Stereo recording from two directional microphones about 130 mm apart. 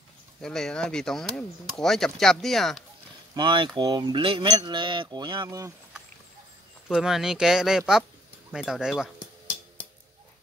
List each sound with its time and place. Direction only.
0.4 s speech: 5° left (ahead or behind)
3.3 s cutlery: 35° right (ahead or behind)
6.9 s speech: 5° right (ahead or behind)